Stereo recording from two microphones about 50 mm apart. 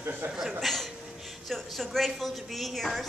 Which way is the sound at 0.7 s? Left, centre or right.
Centre.